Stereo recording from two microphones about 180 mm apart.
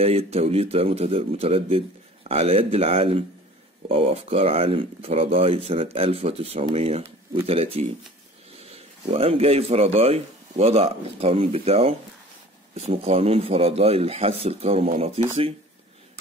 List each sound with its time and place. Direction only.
0.0 s speech: 35° right (ahead or behind)